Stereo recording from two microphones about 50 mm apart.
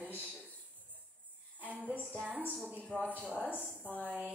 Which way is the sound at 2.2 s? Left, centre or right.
Right.